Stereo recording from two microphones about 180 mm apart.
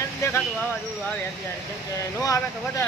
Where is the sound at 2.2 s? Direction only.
20° left (ahead or behind).